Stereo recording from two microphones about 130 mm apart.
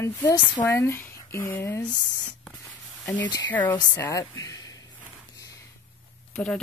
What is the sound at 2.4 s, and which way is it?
Spray, 10° left (ahead or behind).